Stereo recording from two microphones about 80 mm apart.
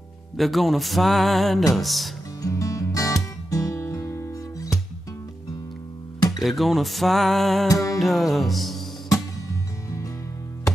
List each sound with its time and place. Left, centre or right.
0.4 s music: centre
2.4 s music: left
6.4 s music: centre
7.7 s music: left
8.0 s music: centre